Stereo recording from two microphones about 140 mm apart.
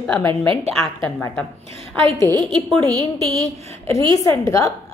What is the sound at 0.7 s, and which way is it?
Speech, 5° left (ahead or behind).